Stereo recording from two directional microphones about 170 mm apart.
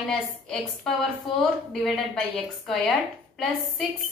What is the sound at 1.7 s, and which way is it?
A woman's voice, 5° left (ahead or behind).